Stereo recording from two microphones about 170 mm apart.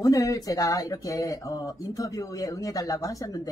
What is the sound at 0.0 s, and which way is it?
Speech, 20° left (ahead or behind).